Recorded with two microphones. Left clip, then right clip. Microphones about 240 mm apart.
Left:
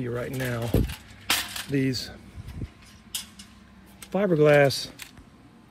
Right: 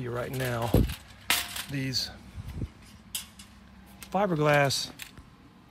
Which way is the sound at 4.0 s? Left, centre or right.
Centre.